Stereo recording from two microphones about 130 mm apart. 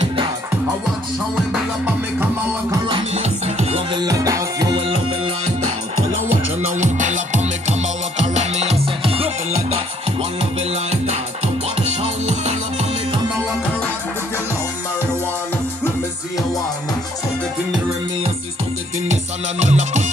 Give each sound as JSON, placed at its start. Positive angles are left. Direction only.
{"t": 3.2, "sound": "music", "side_deg": -60}
{"t": 3.9, "sound": "music", "side_deg": -30}
{"t": 4.8, "sound": "music", "side_deg": -50}
{"t": 6.2, "sound": "music", "side_deg": -65}
{"t": 19.6, "sound": "music", "side_deg": -65}